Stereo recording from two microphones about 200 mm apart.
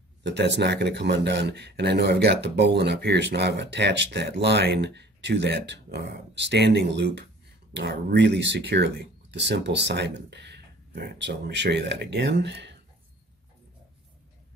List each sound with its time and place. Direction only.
0.2 s speech: 60° right (ahead or behind)